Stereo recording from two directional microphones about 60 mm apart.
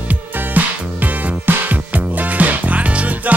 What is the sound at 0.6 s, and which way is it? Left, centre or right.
Music, right.